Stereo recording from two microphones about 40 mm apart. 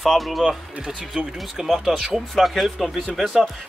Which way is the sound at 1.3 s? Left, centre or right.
Centre.